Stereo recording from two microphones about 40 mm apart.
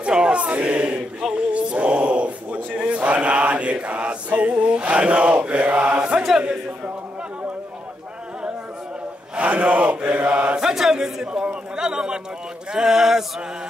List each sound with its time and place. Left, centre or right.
0.0 s choir: right
1.3 s a sound: right
2.8 s chant: right
9.3 s chant: right
10.6 s a man's voice: centre